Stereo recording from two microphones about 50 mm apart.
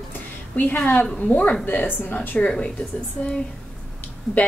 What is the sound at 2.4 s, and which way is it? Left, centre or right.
Speech, left.